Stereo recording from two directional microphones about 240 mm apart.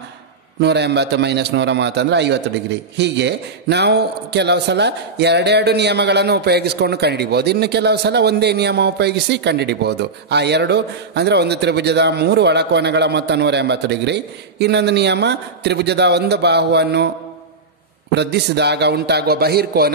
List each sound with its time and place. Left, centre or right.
0.6 s speech: right
18.1 s speech: right